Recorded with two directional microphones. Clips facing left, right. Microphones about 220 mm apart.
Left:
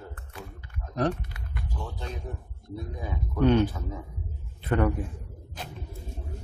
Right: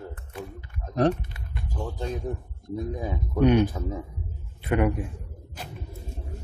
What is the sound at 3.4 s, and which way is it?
A man's voice, 15° right (ahead or behind).